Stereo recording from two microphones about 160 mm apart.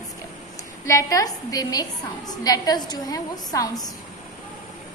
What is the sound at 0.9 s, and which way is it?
A woman's voice, 20° left (ahead or behind).